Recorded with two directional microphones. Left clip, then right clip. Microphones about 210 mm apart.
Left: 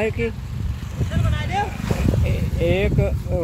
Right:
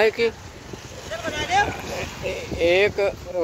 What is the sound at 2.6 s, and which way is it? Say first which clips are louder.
Speech: right 3 dB; 15° right (ahead or behind).